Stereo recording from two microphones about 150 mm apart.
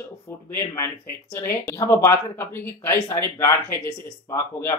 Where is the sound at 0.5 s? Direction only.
15° left (ahead or behind).